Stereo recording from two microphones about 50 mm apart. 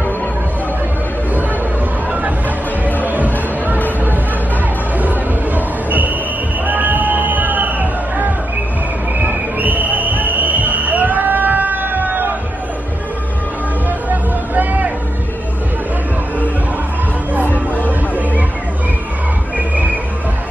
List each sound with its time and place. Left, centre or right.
3.0 s music: right
4.9 s a sound: right
6.6 s music: right
13.8 s music: right
17.7 s music: right